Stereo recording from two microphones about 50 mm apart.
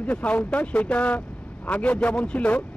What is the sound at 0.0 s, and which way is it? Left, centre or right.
Speech, left.